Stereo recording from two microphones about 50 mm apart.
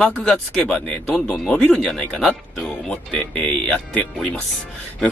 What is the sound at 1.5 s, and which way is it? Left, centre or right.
Speech, left.